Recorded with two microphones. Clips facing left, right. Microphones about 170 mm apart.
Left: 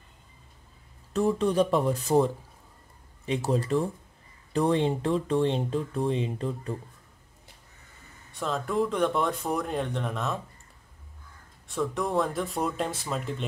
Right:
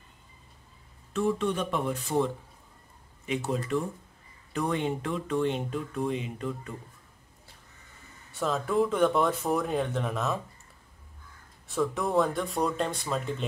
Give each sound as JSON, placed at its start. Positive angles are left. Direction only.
{"t": 1.1, "sound": "speech", "side_deg": 35}
{"t": 8.3, "sound": "speech", "side_deg": 0}
{"t": 11.6, "sound": "speech", "side_deg": 0}